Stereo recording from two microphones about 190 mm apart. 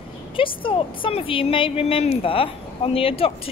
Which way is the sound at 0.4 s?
25° left (ahead or behind).